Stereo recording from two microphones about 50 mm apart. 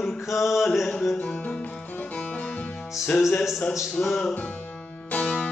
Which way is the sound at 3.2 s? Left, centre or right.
Centre.